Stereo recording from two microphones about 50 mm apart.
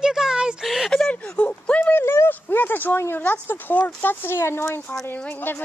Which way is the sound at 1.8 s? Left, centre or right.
Left.